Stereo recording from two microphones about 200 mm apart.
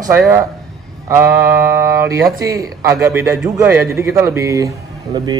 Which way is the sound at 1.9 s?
15° right (ahead or behind).